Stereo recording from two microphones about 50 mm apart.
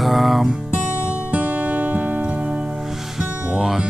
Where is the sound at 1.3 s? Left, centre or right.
Right.